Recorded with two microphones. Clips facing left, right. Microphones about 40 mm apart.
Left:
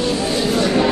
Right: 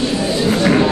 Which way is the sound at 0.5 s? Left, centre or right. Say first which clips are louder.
Right 3 dB; right.